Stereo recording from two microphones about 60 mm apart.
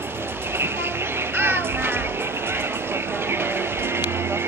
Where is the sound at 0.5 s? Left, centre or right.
Right.